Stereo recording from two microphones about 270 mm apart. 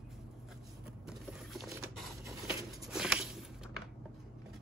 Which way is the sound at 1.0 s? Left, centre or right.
Centre.